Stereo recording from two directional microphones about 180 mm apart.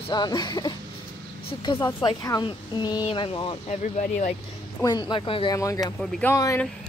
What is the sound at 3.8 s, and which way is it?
Speech, 45° left (ahead or behind).